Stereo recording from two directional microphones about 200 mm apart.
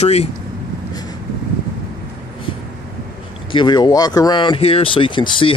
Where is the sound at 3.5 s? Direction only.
20° left (ahead or behind).